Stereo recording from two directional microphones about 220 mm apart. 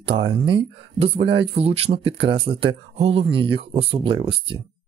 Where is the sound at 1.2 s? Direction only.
55° right (ahead or behind).